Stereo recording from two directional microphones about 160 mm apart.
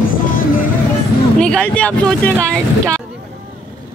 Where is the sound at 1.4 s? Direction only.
5° left (ahead or behind).